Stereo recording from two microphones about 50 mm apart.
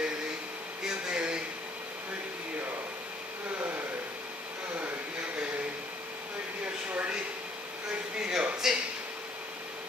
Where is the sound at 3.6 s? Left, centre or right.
Right.